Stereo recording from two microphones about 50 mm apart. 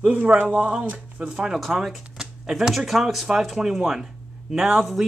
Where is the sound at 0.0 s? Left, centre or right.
Right.